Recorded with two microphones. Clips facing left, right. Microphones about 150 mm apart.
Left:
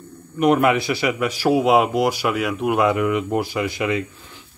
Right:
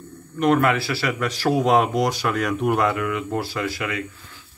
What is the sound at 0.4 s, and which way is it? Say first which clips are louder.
Speech: left 2 dB; 15° left (ahead or behind).